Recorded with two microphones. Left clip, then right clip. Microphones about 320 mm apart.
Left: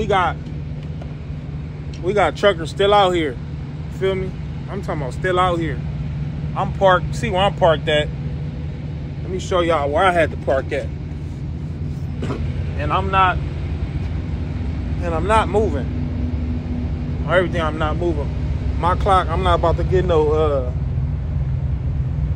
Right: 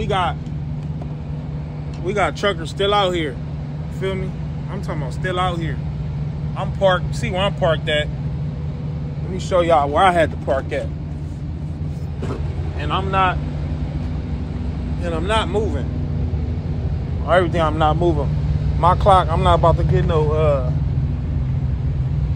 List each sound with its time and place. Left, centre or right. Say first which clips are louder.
0.0 s speech: left 3 dB; centre
2.0 s speech: left 3 dB; centre
9.5 s speech: right 2 dB; centre
12.8 s speech: left 2 dB; centre
15.0 s speech: left 3 dB; centre
17.3 s speech: right 2 dB; centre
20.0 s speech: left 3 dB; centre